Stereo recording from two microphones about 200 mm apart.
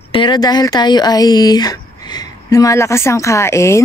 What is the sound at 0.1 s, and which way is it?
Speech, 25° left (ahead or behind).